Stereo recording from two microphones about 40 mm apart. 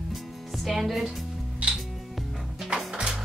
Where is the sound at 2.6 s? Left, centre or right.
Centre.